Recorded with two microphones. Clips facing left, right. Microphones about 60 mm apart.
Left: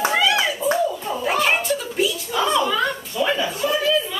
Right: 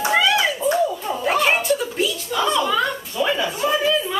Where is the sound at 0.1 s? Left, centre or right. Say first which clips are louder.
Right 1 dB; centre.